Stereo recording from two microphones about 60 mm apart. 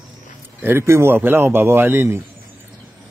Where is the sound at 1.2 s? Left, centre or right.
Right.